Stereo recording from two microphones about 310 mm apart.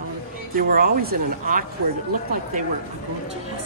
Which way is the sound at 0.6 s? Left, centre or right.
Right.